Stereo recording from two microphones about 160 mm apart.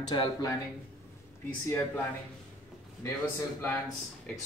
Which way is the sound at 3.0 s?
15° left (ahead or behind).